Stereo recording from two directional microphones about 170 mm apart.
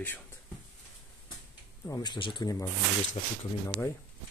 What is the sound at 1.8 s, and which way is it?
Speech, 20° left (ahead or behind).